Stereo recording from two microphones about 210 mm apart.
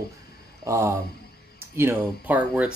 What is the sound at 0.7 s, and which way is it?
A man's voice, 15° right (ahead or behind).